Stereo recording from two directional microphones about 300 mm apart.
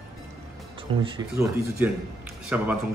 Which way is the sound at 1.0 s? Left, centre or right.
Centre.